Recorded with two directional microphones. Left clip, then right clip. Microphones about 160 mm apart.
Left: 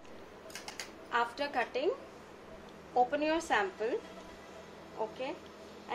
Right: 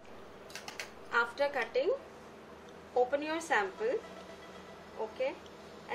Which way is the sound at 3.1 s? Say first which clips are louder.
Left 1 dB; 35° left (ahead or behind).